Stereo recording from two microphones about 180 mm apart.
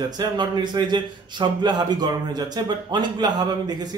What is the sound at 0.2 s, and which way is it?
A man's voice, 25° right (ahead or behind).